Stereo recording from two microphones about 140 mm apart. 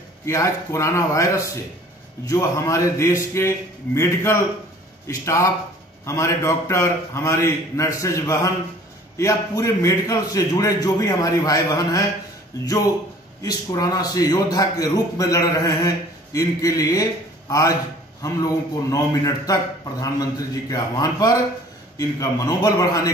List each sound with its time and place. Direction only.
0.2 s a man's voice: 20° left (ahead or behind)